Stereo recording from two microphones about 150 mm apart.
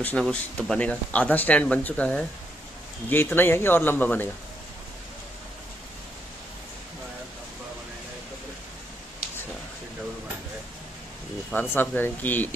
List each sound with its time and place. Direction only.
0.0 s speech: 10° left (ahead or behind)
11.7 s speech: 15° left (ahead or behind)